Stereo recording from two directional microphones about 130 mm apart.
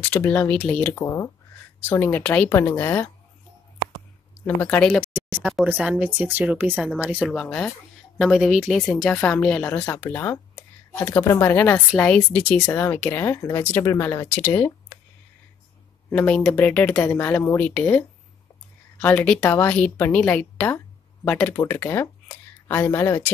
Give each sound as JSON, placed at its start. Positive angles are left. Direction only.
{"t": 0.0, "sound": "a woman's voice", "side_deg": 15}
{"t": 4.6, "sound": "a woman's voice", "side_deg": 15}
{"t": 5.1, "sound": "a sound", "side_deg": -15}
{"t": 5.7, "sound": "speech", "side_deg": -10}
{"t": 6.7, "sound": "a woman's voice", "side_deg": 5}
{"t": 16.1, "sound": "a woman's voice", "side_deg": 10}